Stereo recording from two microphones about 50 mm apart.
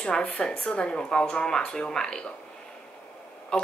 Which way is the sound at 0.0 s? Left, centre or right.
Centre.